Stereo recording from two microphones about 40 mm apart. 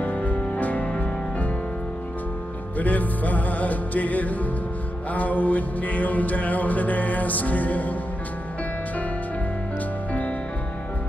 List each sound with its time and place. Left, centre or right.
0.0 s music: left
2.8 s music: left